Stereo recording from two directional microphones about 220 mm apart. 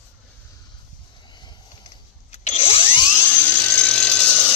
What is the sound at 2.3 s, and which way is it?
Power tool, 30° left (ahead or behind).